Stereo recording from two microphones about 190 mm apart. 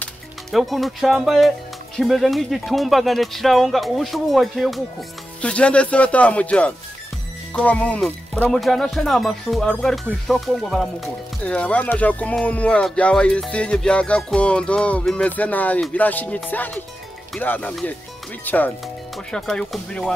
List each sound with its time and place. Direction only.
0.0 s speech: centre (ahead or behind)